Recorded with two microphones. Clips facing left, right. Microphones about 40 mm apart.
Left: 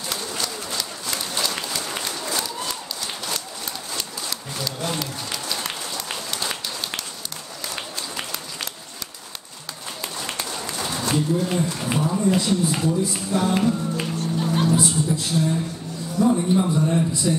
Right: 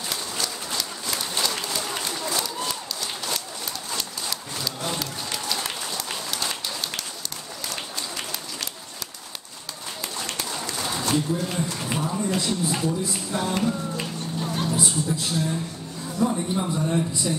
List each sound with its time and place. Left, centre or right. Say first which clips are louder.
0.1 s run: left 2 dB; centre
3.9 s applause: right 1 dB; centre
7.7 s a sound: left 2 dB; centre
10.2 s run: left 1 dB; centre
10.9 s speech: left 2 dB; centre
13.9 s music: left 5 dB; centre
16.2 s speech: left 5 dB; centre